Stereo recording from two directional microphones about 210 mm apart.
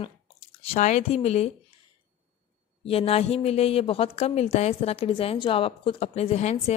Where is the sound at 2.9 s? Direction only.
30° left (ahead or behind).